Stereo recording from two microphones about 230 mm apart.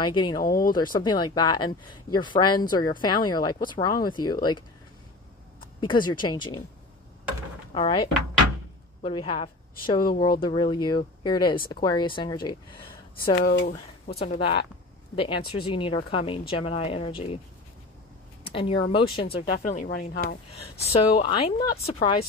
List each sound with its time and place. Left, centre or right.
0.0 s speech: centre
0.4 s speech: left
1.0 s speech: centre
6.0 s speech: centre
7.7 s speech: left
13.1 s speech: left
13.7 s speech: left
18.4 s speech: left
19.3 s speech: left
20.8 s speech: left